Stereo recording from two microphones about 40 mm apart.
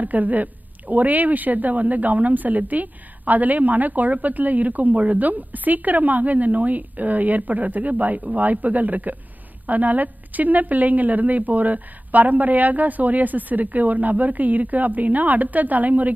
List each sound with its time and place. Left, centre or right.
0.0 s a woman's voice: right